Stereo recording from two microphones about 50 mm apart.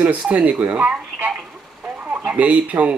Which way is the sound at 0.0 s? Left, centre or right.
Right.